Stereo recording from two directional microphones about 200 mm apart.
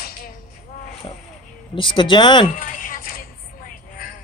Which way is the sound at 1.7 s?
25° left (ahead or behind).